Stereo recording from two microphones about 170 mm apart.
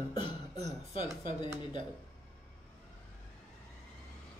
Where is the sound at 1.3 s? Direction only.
25° left (ahead or behind).